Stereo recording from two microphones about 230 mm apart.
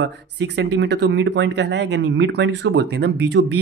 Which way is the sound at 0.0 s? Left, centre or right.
Right.